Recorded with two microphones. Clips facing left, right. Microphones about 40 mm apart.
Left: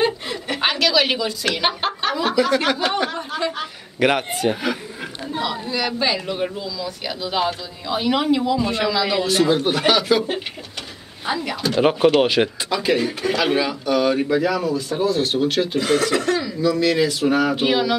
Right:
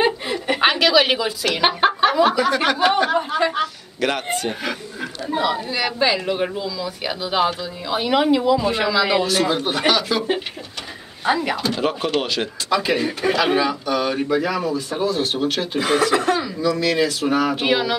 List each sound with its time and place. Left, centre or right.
0.0 s chuckle: centre
1.5 s speech: centre
3.1 s speech: centre
3.6 s a sound: centre
4.3 s a man's voice: centre
5.3 s speech: centre
9.2 s a man's voice: centre
11.2 s speech: centre
11.8 s speech: centre
12.7 s a man's voice: centre
16.7 s a man's voice: centre